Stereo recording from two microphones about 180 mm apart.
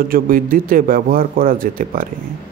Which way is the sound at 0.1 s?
50° right (ahead or behind).